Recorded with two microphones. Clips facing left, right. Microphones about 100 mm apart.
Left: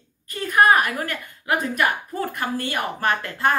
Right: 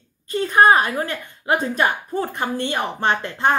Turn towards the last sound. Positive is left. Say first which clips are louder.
# right 2 dB
turn(degrees=-25)  # may be behind; listen again after turning